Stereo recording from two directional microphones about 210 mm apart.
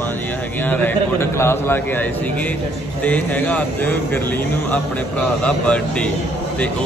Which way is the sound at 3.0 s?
5° left (ahead or behind).